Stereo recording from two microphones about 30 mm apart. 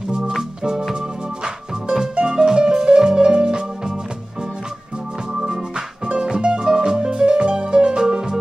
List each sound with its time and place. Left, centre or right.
1.4 s music: right
6.0 s music: right